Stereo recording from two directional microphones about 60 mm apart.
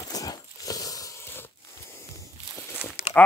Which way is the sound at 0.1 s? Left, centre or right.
Left.